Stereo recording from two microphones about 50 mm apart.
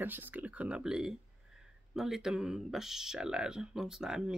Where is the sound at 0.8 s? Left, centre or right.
Centre.